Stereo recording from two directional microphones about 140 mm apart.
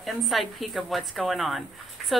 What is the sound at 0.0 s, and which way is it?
Speech, centre (ahead or behind).